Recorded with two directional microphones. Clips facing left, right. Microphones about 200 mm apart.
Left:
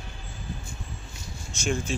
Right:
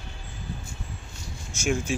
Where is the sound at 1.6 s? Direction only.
10° right (ahead or behind).